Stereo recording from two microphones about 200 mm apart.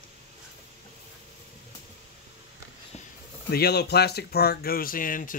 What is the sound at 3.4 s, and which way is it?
Speech, 55° left (ahead or behind).